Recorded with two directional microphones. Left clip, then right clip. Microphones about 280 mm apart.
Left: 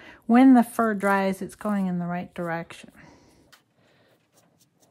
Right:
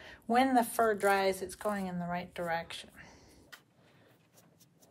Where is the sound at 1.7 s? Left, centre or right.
Left.